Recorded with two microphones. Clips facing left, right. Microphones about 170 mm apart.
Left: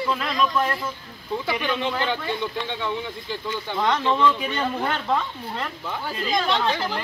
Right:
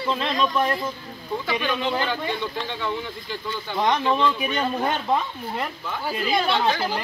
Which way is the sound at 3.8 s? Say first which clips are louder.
Even; 15° right (ahead or behind).